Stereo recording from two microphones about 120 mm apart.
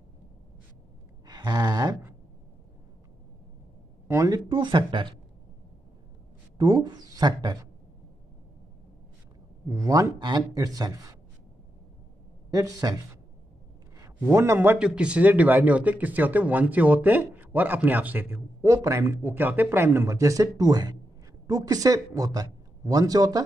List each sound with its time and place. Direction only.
1.2 s a sound: 35° right (ahead or behind)
4.1 s speech: 30° right (ahead or behind)
6.6 s speech: 35° right (ahead or behind)
9.7 s speech: 30° right (ahead or behind)
12.4 s speech: 30° right (ahead or behind)
14.2 s a man's voice: 20° right (ahead or behind)
14.8 s speech: 10° right (ahead or behind); by 23.4 s 30° right (ahead or behind)